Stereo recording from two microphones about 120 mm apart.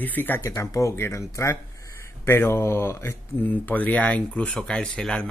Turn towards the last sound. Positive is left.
turn(degrees=5)  # may be behind; listen again after turning